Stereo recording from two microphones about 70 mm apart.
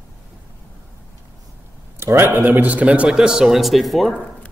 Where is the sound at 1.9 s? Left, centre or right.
Right.